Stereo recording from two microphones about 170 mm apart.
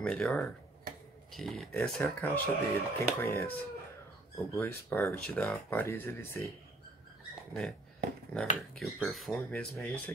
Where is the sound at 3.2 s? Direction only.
15° left (ahead or behind).